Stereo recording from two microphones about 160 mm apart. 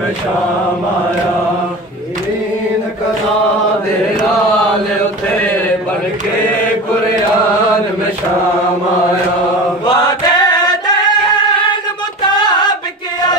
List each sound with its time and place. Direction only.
9.8 s chant: 25° left (ahead or behind)